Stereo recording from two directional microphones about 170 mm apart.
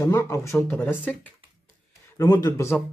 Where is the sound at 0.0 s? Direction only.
20° left (ahead or behind).